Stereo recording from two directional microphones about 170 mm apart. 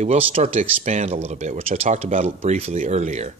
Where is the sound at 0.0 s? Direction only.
40° right (ahead or behind).